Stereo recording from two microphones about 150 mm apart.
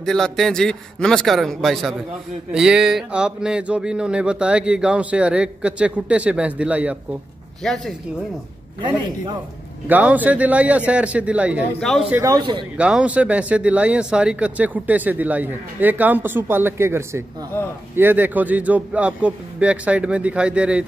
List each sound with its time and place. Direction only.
0.0 s a man's voice: 5° left (ahead or behind)
7.6 s a man's voice: 5° left (ahead or behind)
9.8 s speech: 10° right (ahead or behind)
12.1 s speech: 20° right (ahead or behind)
12.7 s speech: 5° right (ahead or behind)